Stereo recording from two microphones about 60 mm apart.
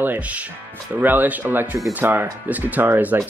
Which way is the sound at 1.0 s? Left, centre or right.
Right.